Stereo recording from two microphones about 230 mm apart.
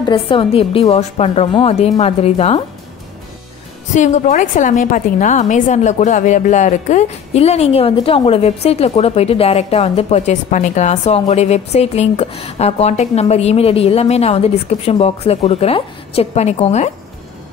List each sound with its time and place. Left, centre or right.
0.0 s a woman's voice: left
3.9 s a woman's voice: left